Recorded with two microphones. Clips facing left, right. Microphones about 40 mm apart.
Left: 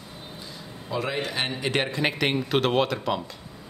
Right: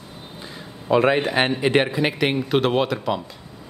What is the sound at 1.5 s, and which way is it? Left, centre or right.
Speech, centre.